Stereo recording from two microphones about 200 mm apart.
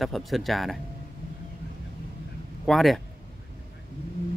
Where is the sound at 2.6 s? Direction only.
Centre (ahead or behind).